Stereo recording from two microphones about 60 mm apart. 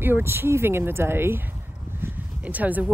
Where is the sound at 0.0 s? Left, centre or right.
Right.